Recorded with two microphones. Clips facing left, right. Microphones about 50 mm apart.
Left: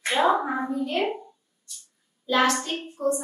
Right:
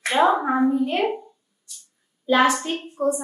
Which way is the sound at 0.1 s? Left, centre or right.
Centre.